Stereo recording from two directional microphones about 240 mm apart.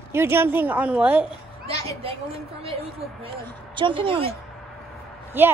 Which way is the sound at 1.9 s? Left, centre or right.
Right.